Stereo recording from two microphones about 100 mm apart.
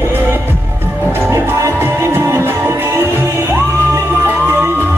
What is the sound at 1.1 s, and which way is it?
Music, 25° right (ahead or behind).